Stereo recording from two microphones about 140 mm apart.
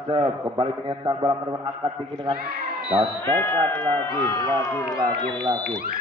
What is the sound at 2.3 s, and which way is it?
Speech, 90° right.